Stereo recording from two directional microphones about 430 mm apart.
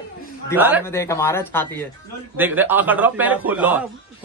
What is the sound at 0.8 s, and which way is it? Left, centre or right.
A man's voice, centre.